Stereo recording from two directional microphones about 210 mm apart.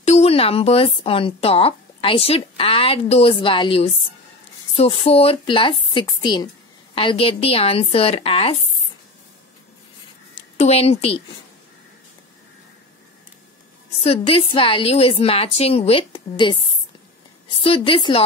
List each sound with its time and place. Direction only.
0.0 s speech: 30° left (ahead or behind)
10.6 s speech: 30° left (ahead or behind)
14.0 s speech: 25° left (ahead or behind)